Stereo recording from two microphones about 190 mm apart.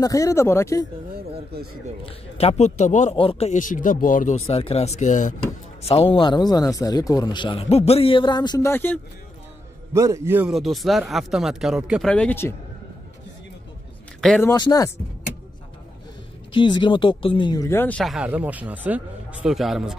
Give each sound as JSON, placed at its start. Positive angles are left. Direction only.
{"t": 0.0, "sound": "speech", "side_deg": 15}
{"t": 2.0, "sound": "a man's voice", "side_deg": 30}
{"t": 4.5, "sound": "a man's voice", "side_deg": 30}
{"t": 9.9, "sound": "speech", "side_deg": -15}
{"t": 14.4, "sound": "speech", "side_deg": 20}
{"t": 16.5, "sound": "speech", "side_deg": 25}